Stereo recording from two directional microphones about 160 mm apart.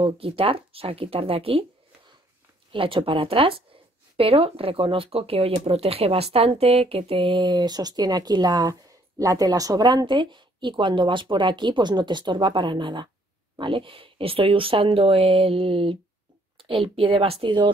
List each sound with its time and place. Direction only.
0.0 s speech: 35° right (ahead or behind)
2.7 s a woman's voice: 35° right (ahead or behind)